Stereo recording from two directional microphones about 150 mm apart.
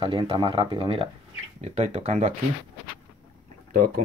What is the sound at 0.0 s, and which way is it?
Speech, 35° right (ahead or behind).